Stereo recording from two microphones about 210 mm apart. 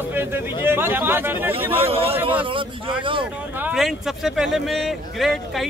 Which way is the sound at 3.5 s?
5° right (ahead or behind).